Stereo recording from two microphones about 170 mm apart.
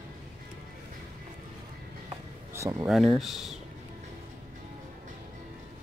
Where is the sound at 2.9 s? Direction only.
Centre (ahead or behind).